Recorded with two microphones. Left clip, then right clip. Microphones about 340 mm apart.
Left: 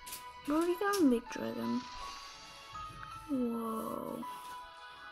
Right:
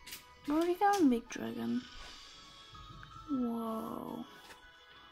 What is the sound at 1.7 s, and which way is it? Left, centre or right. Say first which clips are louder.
Music: left 2 dB; left.